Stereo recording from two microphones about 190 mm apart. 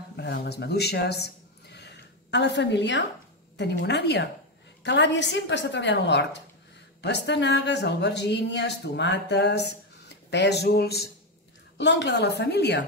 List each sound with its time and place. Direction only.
0.1 s speech: 60° left (ahead or behind)